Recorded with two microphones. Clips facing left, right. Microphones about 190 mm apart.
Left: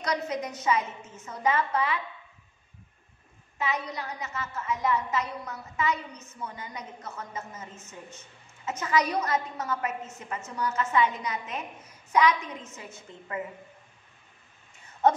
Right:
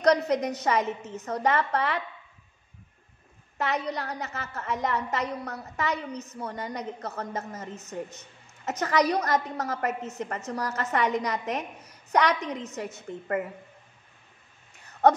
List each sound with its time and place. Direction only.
0.0 s a woman's voice: 70° right (ahead or behind)
3.5 s a woman's voice: 70° right (ahead or behind)
13.1 s a woman's voice: 60° right (ahead or behind)